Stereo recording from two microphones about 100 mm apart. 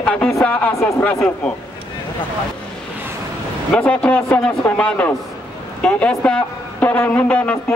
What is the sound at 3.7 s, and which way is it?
A man's voice, 10° left (ahead or behind).